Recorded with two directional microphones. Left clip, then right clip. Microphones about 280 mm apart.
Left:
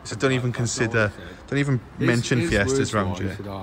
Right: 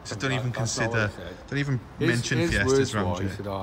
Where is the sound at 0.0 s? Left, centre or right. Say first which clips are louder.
Left 6 dB; centre.